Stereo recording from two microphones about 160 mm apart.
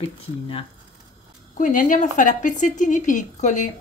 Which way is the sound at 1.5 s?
55° left (ahead or behind).